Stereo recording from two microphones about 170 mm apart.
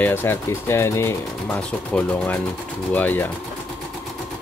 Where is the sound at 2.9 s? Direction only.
10° left (ahead or behind).